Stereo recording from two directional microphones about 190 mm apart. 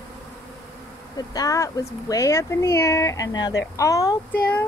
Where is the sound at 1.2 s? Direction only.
20° left (ahead or behind).